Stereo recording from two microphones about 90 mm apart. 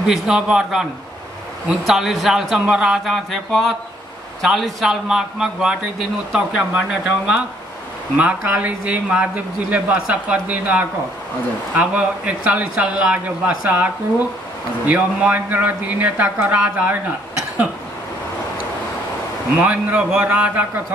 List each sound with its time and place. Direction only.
0.0 s a man's voice: 10° right (ahead or behind)
1.9 s a man's voice: centre (ahead or behind)
19.6 s a man's voice: 15° right (ahead or behind)